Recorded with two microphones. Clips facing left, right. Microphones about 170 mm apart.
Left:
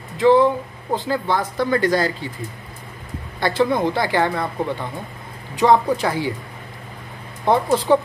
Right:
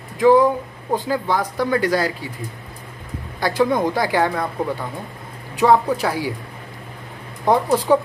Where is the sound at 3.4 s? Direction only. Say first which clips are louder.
Even; 10° right (ahead or behind).